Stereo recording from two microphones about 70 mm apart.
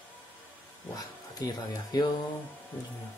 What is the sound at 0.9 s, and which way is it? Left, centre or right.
Speech, left.